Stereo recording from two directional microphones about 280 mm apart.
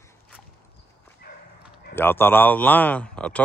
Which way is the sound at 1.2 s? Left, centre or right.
Left.